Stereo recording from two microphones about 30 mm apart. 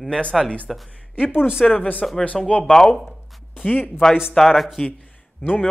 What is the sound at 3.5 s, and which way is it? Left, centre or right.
Speech, left.